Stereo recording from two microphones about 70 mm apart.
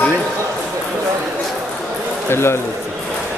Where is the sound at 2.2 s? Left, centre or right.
Left.